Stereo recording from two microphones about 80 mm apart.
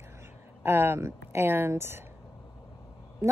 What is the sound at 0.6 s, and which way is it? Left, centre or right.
A woman's voice, right.